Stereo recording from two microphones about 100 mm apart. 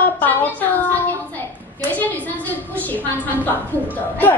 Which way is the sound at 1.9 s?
15° left (ahead or behind).